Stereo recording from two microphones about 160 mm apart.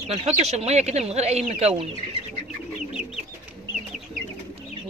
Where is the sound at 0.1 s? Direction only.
45° right (ahead or behind).